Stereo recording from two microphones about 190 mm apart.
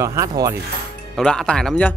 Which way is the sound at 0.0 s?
15° right (ahead or behind).